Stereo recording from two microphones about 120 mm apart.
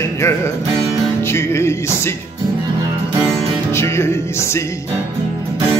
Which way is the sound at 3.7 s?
20° left (ahead or behind).